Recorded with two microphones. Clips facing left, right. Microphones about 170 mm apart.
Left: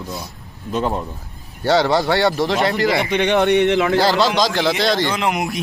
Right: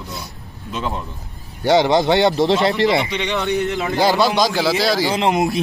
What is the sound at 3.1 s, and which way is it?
Speech, 60° left (ahead or behind).